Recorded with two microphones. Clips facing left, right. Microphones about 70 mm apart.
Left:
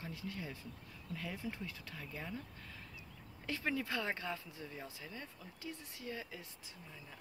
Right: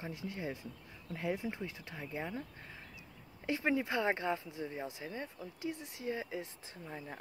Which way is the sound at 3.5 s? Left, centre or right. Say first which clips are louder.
Right 5 dB; right.